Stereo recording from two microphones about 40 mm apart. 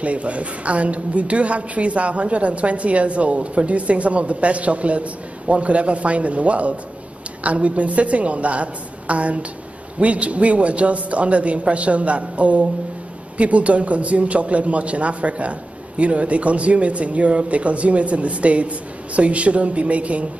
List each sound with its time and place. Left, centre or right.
0.0 s a woman's voice: right